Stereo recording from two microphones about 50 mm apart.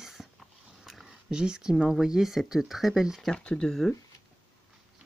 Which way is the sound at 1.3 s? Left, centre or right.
Centre.